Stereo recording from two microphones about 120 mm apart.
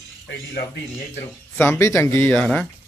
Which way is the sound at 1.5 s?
20° left (ahead or behind).